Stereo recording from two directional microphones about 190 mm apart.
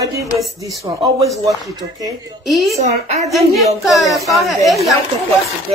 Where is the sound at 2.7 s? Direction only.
35° right (ahead or behind).